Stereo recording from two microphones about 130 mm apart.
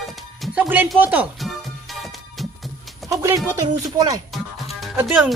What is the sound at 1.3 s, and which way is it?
Music, centre (ahead or behind).